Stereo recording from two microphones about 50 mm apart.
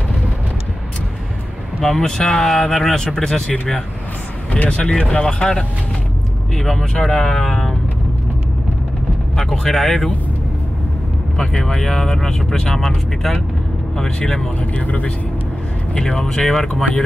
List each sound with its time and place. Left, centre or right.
1.8 s speech: centre
4.5 s speech: left
4.8 s speech: centre
9.4 s speech: centre
11.3 s speech: centre
14.6 s speech: left
16.1 s speech: centre